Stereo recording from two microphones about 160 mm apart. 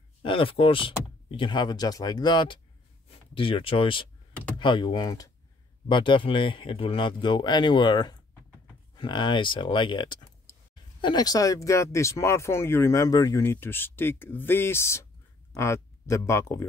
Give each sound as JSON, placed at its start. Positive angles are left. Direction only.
{"t": 0.2, "sound": "speech", "side_deg": 35}